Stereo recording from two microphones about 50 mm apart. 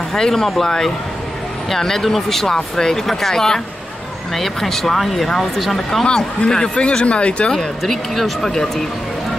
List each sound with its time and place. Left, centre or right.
0.1 s speech: centre
6.0 s speech: centre
7.5 s speech: centre